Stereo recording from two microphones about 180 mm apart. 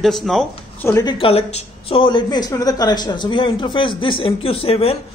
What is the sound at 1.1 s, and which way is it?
A woman's voice, 35° left (ahead or behind).